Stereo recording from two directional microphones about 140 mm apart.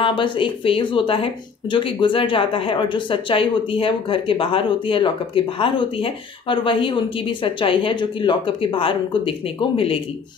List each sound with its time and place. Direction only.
0.0 s speech: 35° left (ahead or behind)